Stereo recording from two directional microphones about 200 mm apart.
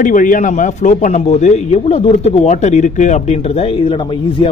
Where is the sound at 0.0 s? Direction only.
40° left (ahead or behind).